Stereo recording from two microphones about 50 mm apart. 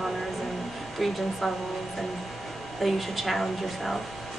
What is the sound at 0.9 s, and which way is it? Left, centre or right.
Speech, centre.